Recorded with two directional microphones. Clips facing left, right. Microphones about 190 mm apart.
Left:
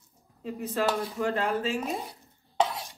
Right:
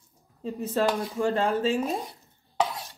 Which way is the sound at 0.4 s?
30° right (ahead or behind).